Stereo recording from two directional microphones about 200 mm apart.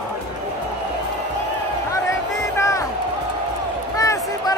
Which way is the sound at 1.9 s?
15° left (ahead or behind).